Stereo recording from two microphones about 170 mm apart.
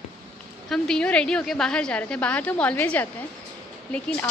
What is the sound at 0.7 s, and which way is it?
A woman's voice, 5° left (ahead or behind).